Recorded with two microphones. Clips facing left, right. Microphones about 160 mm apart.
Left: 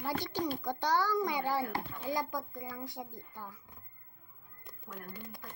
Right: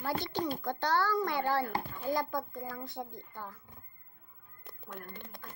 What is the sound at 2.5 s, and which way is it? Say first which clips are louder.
Speech: right 2 dB; 50° right (ahead or behind).